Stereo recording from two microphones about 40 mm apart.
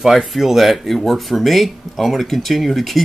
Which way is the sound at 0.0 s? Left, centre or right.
Centre.